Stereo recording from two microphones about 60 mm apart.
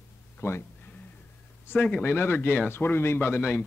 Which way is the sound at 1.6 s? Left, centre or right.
Left.